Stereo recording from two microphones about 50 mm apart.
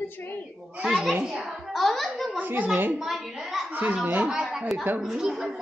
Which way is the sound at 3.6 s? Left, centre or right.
Right.